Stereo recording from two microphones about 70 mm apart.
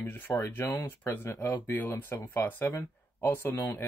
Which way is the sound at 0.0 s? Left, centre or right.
Left.